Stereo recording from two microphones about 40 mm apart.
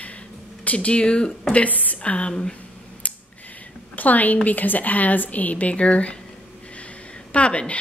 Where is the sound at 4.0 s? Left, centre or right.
Left.